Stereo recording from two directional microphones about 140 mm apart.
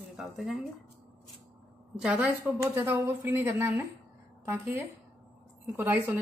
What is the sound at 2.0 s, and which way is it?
Speech, 5° right (ahead or behind).